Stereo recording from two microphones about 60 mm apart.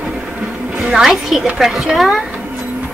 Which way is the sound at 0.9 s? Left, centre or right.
Centre.